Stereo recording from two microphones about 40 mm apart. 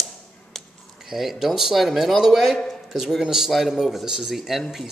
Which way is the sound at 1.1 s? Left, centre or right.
Centre.